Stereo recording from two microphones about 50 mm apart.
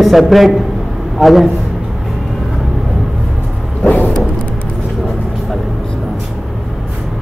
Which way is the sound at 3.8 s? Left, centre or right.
Left.